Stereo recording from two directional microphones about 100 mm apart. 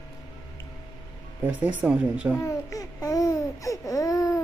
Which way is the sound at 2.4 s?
35° left (ahead or behind).